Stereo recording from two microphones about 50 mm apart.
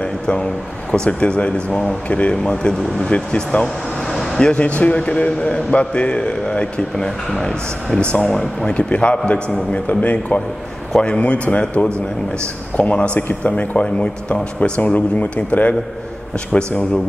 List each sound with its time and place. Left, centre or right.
0.0 s speech: centre
3.6 s speech: centre
8.0 s speech: left